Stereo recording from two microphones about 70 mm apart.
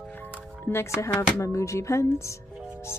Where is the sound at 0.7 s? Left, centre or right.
Left.